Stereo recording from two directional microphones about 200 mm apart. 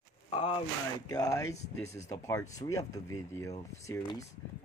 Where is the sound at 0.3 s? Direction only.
25° left (ahead or behind).